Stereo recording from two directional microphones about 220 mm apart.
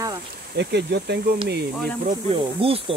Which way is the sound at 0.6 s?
50° right (ahead or behind).